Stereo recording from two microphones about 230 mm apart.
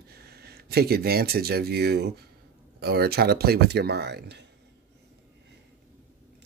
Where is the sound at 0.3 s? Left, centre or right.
Right.